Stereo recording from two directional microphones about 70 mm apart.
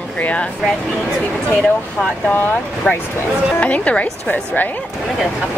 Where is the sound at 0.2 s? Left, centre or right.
Centre.